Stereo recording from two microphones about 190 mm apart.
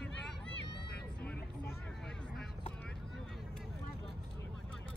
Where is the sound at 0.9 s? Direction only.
60° left (ahead or behind).